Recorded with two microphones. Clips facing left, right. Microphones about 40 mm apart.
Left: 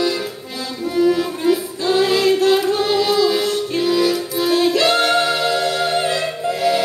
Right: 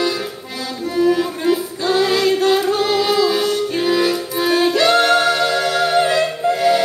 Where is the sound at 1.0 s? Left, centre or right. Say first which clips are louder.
Even; centre.